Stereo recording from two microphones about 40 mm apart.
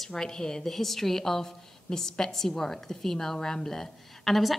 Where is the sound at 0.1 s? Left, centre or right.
Centre.